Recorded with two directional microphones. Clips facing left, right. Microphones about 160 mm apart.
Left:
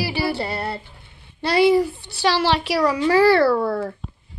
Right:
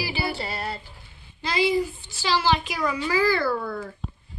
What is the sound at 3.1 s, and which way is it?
Speech, 70° left (ahead or behind).